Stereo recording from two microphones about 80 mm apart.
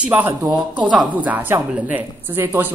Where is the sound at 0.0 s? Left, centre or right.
Right.